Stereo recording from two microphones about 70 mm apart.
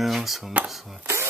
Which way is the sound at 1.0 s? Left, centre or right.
Right.